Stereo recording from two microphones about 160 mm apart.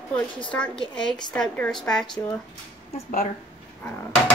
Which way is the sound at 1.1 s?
5° left (ahead or behind).